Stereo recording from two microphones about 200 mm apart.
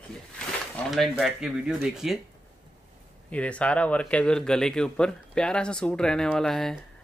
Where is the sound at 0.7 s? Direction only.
Centre (ahead or behind).